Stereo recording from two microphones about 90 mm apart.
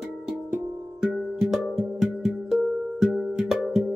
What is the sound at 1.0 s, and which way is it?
Music, 5° right (ahead or behind).